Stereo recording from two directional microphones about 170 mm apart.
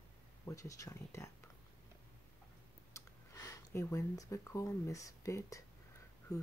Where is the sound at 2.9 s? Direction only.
20° left (ahead or behind).